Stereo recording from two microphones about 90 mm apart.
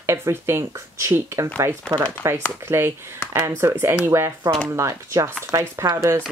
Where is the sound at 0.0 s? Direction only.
30° right (ahead or behind).